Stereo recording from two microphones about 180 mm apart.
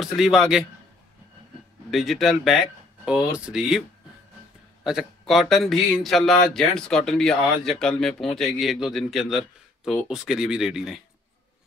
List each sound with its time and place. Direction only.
0.0 s speech: centre (ahead or behind)
1.9 s speech: centre (ahead or behind)
4.8 s speech: centre (ahead or behind)